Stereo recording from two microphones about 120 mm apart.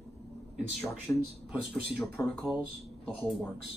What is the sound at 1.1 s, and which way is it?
Speech, 20° left (ahead or behind).